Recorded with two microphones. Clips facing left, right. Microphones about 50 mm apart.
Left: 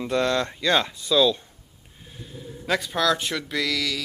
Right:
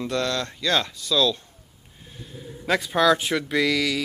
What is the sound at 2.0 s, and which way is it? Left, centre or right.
Speech, centre.